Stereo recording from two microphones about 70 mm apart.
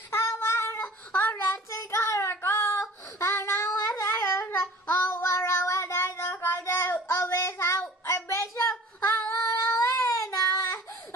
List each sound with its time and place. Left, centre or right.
0.1 s child singing: left
8.0 s female singing: left